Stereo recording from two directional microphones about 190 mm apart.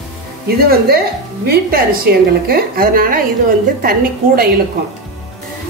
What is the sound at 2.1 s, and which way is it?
A woman's voice, 55° right (ahead or behind).